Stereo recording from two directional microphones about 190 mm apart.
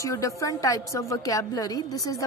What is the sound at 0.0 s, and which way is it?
A woman's voice, 15° left (ahead or behind).